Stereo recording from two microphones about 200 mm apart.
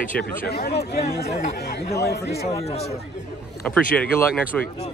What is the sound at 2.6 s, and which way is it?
Speech, 30° left (ahead or behind).